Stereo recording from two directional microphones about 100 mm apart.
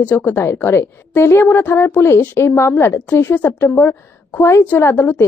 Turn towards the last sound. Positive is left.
turn(degrees=20)  # may be behind; listen again after turning